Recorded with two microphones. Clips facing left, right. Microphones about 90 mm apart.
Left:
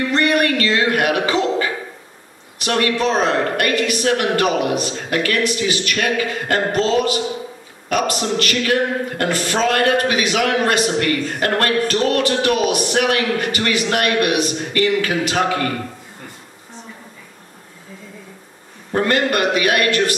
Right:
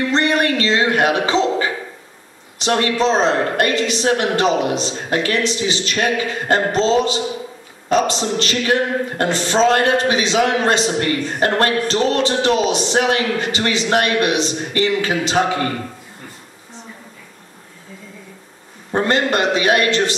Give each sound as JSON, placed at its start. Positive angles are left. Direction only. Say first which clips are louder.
{"t": 0.1, "sound": "music", "louder": "left 1 dB", "side_deg": -25}
{"t": 2.6, "sound": "a man's voice", "louder": "right 1 dB", "side_deg": -25}
{"t": 18.9, "sound": "a man's voice", "louder": "even", "side_deg": -25}